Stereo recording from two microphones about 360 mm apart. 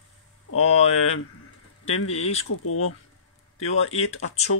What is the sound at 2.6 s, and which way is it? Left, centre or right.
Speech, left.